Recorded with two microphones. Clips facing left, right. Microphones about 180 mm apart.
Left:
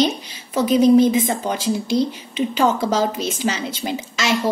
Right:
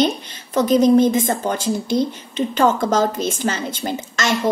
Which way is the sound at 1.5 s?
45° right (ahead or behind).